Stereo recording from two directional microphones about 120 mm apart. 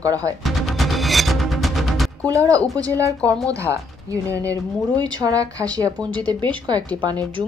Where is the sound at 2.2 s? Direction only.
30° right (ahead or behind).